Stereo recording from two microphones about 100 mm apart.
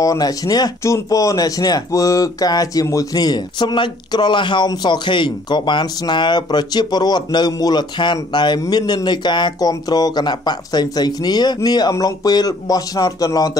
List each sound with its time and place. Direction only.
0.0 s speech: 35° left (ahead or behind)